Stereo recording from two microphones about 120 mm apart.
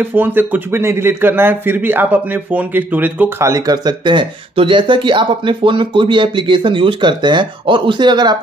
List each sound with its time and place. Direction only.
0.0 s speech: 15° right (ahead or behind); by 8.4 s 35° right (ahead or behind)